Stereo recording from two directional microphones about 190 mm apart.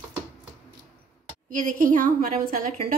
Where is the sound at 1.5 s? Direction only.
45° right (ahead or behind).